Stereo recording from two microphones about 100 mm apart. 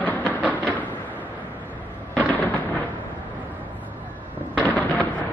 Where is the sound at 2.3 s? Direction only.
15° left (ahead or behind).